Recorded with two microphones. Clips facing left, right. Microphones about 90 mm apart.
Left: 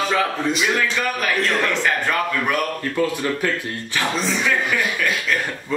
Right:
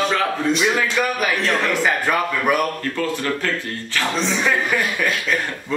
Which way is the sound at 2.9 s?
15° left (ahead or behind).